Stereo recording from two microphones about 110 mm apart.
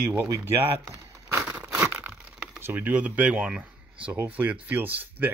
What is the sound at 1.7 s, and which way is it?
Tearing, 20° right (ahead or behind).